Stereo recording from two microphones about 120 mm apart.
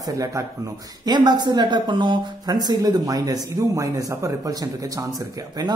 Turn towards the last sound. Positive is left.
turn(degrees=-35)  # may be behind; listen again after turning